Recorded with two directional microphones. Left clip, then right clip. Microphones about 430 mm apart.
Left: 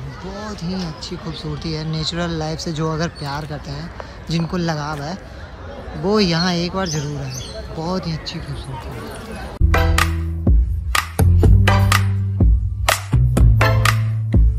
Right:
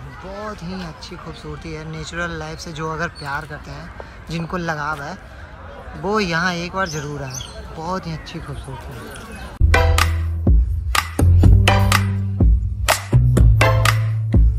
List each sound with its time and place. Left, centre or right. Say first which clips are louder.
0.5 s speech: left 2 dB; centre
9.7 s music: right 1 dB; centre